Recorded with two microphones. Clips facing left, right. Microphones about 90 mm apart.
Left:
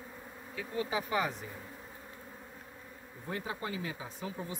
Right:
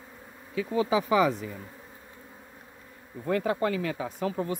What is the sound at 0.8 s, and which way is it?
Speech, 90° right.